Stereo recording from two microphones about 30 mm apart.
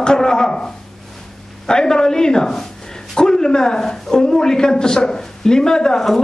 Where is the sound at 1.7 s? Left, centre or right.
Left.